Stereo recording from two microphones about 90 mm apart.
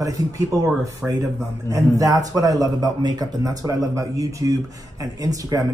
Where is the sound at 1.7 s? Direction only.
40° right (ahead or behind).